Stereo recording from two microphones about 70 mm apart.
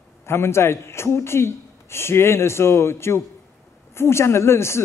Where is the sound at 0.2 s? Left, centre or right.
Left.